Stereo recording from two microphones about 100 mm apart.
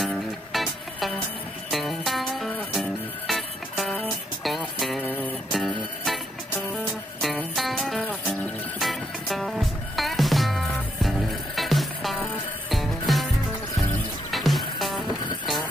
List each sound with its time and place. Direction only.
0.0 s music: centre (ahead or behind)
5.0 s music: 15° left (ahead or behind)
5.5 s music: centre (ahead or behind)
7.5 s music: centre (ahead or behind)
14.3 s music: centre (ahead or behind)